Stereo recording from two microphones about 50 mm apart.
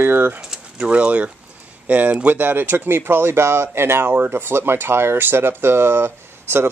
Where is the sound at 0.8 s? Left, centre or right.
Right.